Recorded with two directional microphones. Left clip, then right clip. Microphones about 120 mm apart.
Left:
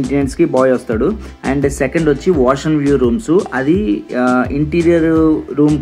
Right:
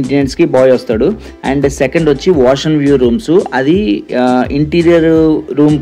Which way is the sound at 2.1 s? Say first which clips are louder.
Right 3 dB; 15° right (ahead or behind).